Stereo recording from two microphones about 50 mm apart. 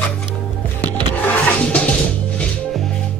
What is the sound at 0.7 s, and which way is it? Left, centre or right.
Music, left.